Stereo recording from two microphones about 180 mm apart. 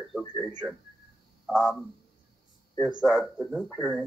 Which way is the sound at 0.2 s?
10° left (ahead or behind).